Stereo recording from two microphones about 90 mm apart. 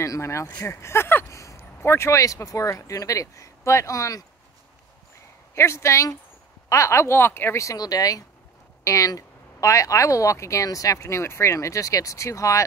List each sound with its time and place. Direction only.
0.0 s speech: 35° left (ahead or behind)
5.5 s speech: 30° left (ahead or behind)